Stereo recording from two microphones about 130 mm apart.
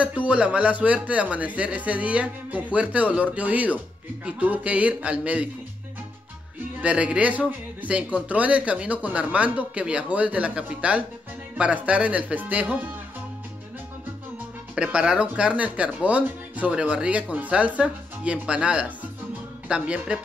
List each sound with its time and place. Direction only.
0.0 s speech: 10° right (ahead or behind)
6.8 s speech: 10° right (ahead or behind)
14.8 s speech: 10° right (ahead or behind)